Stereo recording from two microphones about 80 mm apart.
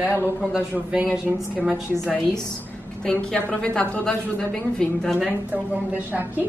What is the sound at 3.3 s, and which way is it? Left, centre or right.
A woman's voice, centre.